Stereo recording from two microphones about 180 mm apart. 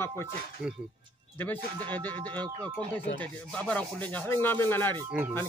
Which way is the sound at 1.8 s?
10° left (ahead or behind).